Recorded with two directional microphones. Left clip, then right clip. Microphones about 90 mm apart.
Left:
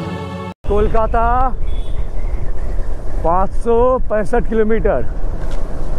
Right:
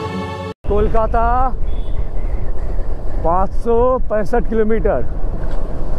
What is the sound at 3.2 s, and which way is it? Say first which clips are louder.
Speech: left 1 dB; 30° left (ahead or behind).